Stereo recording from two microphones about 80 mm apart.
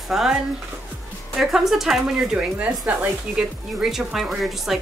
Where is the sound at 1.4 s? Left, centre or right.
Centre.